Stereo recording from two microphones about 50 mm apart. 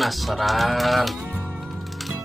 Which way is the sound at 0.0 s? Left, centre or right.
Centre.